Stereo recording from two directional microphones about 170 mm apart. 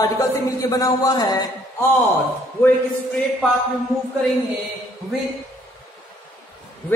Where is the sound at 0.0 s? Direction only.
20° left (ahead or behind).